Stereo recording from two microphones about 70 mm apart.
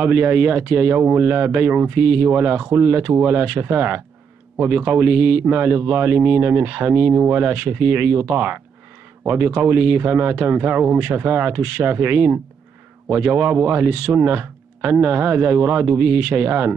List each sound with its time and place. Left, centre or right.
0.0 s a man's voice: right